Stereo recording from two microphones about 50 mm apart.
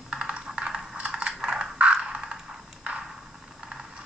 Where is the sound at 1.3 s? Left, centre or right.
Centre.